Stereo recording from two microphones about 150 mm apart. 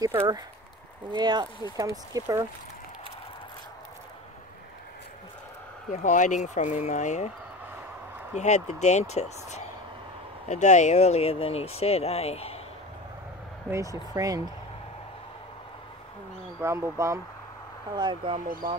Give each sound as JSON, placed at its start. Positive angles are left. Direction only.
{"t": 0.0, "sound": "speech", "side_deg": -25}
{"t": 6.0, "sound": "speech", "side_deg": 55}
{"t": 8.4, "sound": "speech", "side_deg": 50}
{"t": 13.7, "sound": "speech", "side_deg": -20}
{"t": 16.6, "sound": "speech", "side_deg": -20}
{"t": 17.9, "sound": "speech", "side_deg": -35}